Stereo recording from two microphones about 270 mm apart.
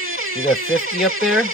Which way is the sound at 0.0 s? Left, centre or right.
Right.